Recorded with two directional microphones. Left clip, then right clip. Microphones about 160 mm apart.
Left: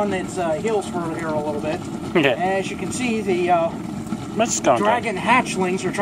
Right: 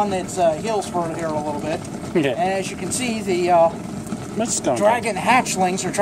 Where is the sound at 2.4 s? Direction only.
40° right (ahead or behind).